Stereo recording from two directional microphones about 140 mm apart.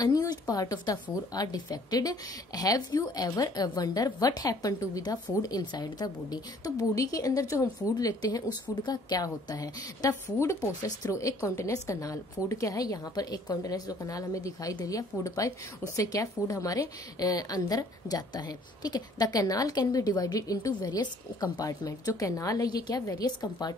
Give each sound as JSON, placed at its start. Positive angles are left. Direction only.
{"t": 0.0, "sound": "a woman's voice", "side_deg": 25}